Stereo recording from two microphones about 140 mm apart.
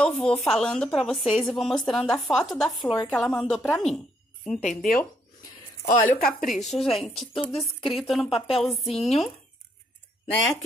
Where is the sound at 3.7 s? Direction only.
5° left (ahead or behind).